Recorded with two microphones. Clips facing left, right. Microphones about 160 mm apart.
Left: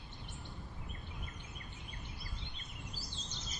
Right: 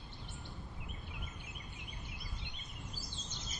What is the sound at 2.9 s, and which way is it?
Bird vocalization, 50° right (ahead or behind).